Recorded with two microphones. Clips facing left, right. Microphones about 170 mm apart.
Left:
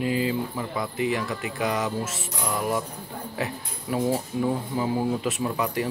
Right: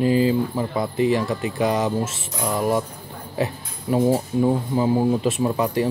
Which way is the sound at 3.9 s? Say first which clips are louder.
Right 6 dB; 30° right (ahead or behind).